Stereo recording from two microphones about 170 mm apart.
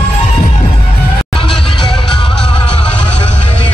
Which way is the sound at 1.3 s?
30° left (ahead or behind).